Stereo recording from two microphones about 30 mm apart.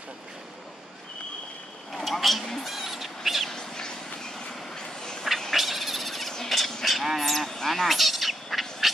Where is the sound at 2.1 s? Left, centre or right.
Centre.